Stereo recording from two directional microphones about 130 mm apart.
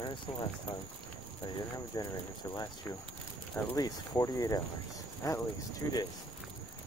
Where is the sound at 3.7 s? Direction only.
25° left (ahead or behind).